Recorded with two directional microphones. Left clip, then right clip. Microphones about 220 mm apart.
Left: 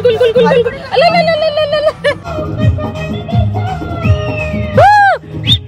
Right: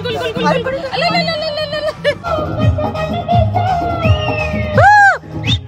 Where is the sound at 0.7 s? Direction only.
Centre (ahead or behind).